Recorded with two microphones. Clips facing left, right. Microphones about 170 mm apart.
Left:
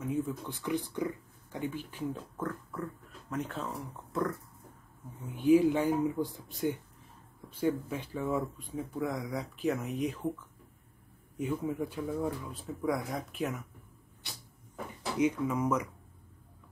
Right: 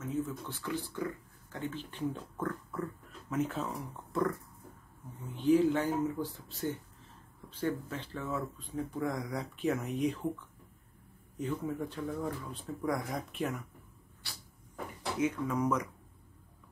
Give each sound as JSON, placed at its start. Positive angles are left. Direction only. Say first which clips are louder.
{"t": 0.1, "sound": "speech", "louder": "left 1 dB", "side_deg": 15}
{"t": 11.3, "sound": "speech", "louder": "left 2 dB", "side_deg": 10}
{"t": 14.2, "sound": "cupboard open or close", "louder": "left 2 dB", "side_deg": 20}
{"t": 15.1, "sound": "speech", "louder": "left 3 dB", "side_deg": 15}